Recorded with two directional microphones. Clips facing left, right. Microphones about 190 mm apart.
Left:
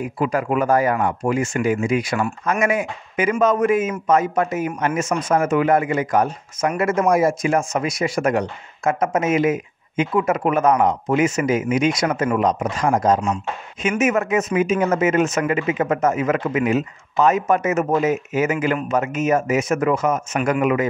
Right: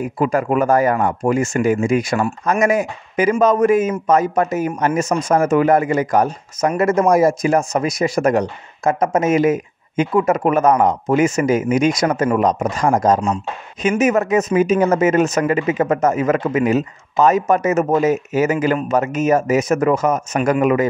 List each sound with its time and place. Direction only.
0.0 s a man's voice: 45° right (ahead or behind)